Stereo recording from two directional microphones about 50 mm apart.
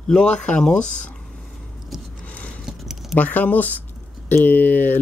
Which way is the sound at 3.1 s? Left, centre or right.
Left.